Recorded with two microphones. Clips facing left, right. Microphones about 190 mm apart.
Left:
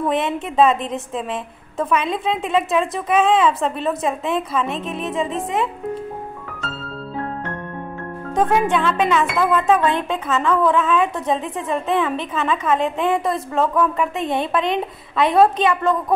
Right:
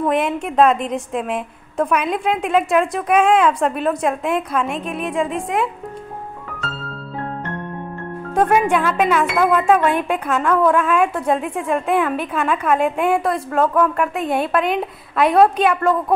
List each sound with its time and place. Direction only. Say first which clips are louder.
0.0 s a woman's voice: right 2 dB; centre (ahead or behind)
8.4 s a woman's voice: right 2 dB; 10° right (ahead or behind)